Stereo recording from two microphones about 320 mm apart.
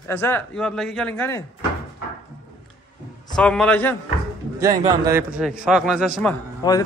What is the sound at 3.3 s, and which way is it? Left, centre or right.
Speech, centre.